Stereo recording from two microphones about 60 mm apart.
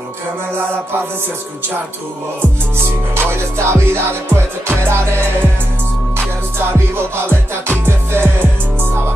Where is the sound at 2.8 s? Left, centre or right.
Right.